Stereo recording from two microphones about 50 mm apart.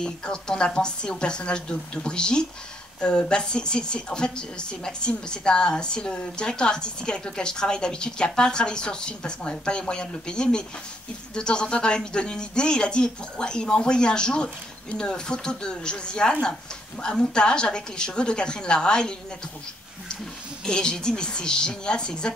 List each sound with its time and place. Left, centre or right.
0.0 s a woman's voice: centre
20.6 s a woman's voice: centre